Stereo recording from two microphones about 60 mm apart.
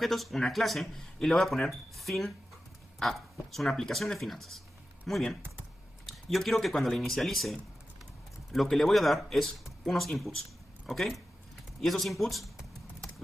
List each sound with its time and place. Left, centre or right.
0.0 s speech: centre